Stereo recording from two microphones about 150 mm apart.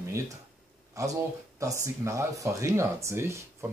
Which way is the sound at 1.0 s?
20° right (ahead or behind).